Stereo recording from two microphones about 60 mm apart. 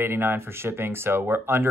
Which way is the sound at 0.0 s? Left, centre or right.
Right.